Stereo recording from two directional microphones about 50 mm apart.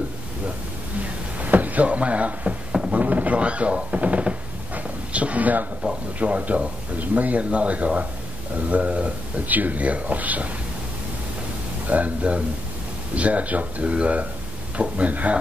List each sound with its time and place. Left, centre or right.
1.4 s speech: right
4.7 s a sound: right
6.1 s speech: right
11.9 s speech: right